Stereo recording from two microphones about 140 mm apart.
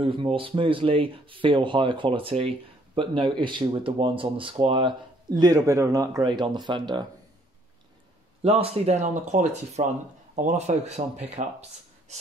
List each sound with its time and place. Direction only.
0.0 s speech: 35° right (ahead or behind)
8.4 s speech: 45° right (ahead or behind)